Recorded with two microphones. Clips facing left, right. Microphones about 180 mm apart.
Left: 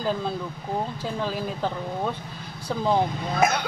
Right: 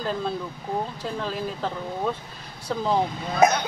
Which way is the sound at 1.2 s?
Centre (ahead or behind).